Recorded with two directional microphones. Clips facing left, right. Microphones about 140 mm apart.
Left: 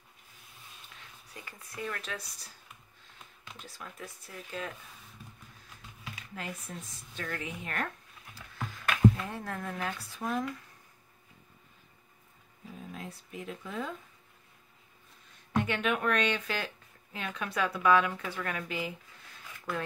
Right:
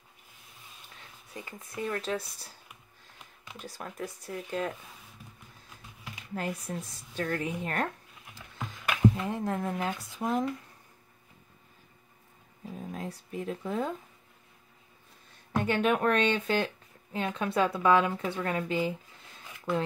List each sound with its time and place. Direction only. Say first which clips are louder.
1.3 s speech: right 6 dB; 25° right (ahead or behind)
3.6 s speech: right 8 dB; 40° right (ahead or behind)
6.7 s speech: right 7 dB; 45° right (ahead or behind)
8.5 s speech: even; 15° right (ahead or behind)
12.9 s speech: right 6 dB; 35° right (ahead or behind)
15.6 s speech: right 6 dB; 35° right (ahead or behind)